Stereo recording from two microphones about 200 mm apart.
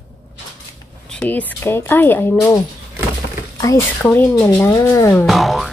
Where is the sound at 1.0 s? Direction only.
5° left (ahead or behind).